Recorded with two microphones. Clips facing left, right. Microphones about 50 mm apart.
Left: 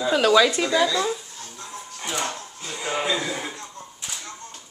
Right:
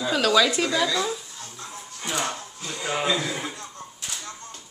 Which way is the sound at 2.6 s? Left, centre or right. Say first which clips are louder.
Even; centre.